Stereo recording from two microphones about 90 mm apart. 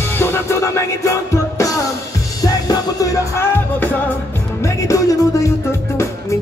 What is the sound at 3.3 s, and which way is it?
Music, 25° left (ahead or behind).